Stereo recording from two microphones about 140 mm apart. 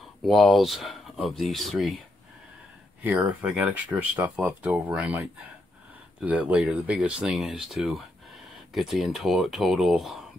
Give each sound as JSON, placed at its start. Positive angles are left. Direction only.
{"t": 0.2, "sound": "speech", "side_deg": 0}
{"t": 3.0, "sound": "speech", "side_deg": -10}
{"t": 6.2, "sound": "speech", "side_deg": -10}